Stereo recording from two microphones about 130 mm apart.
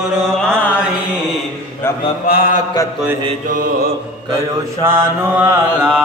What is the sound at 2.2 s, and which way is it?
Mantra, 90° left.